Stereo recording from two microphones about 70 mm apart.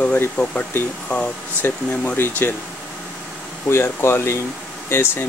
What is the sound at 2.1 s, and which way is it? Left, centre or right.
Speech, left.